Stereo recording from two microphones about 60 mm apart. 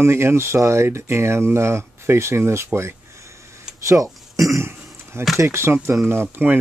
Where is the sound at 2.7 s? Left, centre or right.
Right.